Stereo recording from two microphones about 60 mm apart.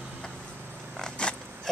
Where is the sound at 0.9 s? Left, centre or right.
Centre.